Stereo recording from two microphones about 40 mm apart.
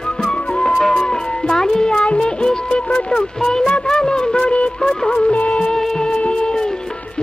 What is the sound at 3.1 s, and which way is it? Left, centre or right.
Speech, centre.